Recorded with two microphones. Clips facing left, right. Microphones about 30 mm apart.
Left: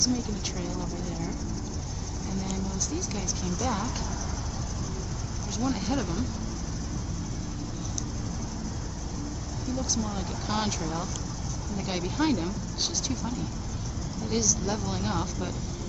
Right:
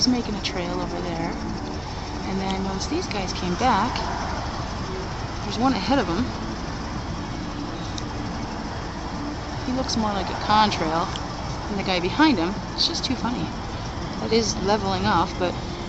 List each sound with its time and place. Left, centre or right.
0.0 s speech: right
2.3 s speech: right
5.6 s speech: right
9.7 s speech: right